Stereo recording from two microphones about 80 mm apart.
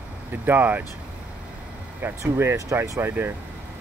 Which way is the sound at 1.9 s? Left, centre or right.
Right.